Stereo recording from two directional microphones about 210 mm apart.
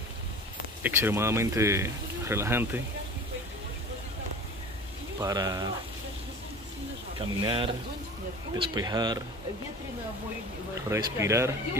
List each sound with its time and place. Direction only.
0.8 s speech: 10° right (ahead or behind)
5.2 s speech: 15° right (ahead or behind)
7.2 s a man's voice: 25° right (ahead or behind)
10.7 s speech: 15° right (ahead or behind)